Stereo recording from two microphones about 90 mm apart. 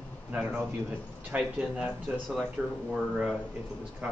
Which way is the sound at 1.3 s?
15° right (ahead or behind).